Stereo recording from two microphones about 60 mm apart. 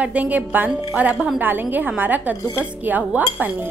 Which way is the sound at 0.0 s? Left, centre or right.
Right.